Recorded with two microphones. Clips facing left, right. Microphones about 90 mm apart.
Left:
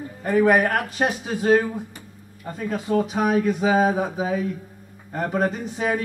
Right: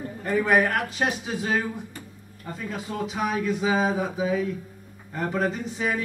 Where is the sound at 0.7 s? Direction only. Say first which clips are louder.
Left 3 dB; 45° left (ahead or behind).